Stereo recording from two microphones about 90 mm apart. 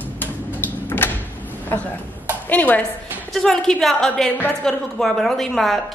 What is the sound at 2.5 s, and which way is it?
Speech, 20° left (ahead or behind).